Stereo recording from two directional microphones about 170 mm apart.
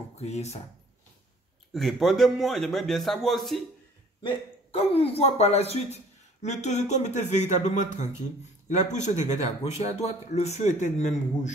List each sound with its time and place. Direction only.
0.2 s a man's voice: 40° left (ahead or behind)
1.7 s a man's voice: centre (ahead or behind)
4.2 s a man's voice: 35° left (ahead or behind)